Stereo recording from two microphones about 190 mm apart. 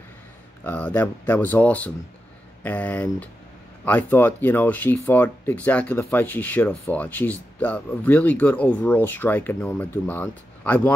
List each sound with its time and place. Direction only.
0.7 s speech: 10° left (ahead or behind)